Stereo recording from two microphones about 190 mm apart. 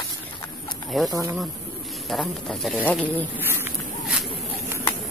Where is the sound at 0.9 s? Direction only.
Centre (ahead or behind).